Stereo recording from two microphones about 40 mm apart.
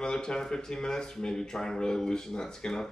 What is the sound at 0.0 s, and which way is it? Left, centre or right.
Speech, centre.